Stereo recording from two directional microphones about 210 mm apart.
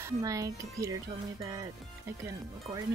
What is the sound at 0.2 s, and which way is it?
Speech, 15° right (ahead or behind).